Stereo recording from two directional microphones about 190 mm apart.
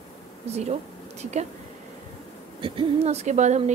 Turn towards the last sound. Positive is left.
turn(degrees=-35)  # may be behind; listen again after turning